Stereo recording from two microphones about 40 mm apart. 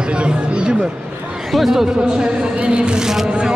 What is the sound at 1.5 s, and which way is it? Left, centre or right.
Speech, centre.